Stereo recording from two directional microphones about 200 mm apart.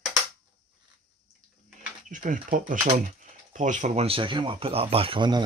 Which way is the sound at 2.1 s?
40° right (ahead or behind).